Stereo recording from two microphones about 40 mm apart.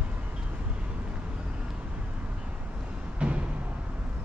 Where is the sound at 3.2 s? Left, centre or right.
Right.